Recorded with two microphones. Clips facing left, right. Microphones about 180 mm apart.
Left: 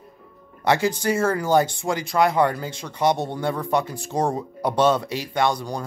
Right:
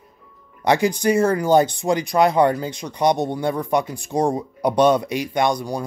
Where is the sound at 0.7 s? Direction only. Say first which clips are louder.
Right 3 dB; 15° right (ahead or behind).